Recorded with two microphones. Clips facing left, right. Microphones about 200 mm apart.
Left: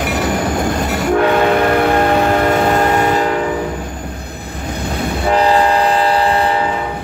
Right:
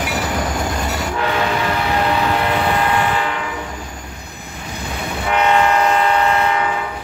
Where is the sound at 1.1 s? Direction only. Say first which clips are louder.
Left 9 dB; 55° left (ahead or behind).